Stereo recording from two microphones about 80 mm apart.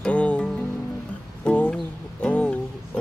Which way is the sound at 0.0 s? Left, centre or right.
Centre.